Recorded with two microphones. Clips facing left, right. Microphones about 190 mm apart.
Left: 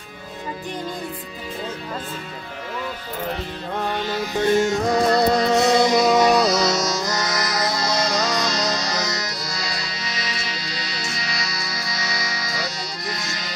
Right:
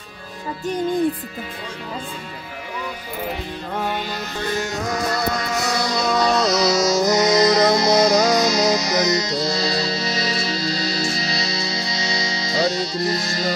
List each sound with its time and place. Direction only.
3.7 s music: 5° right (ahead or behind)
4.5 s music: 25° left (ahead or behind); by 6.8 s centre (ahead or behind)
7.1 s music: 15° right (ahead or behind); by 13.5 s 30° right (ahead or behind)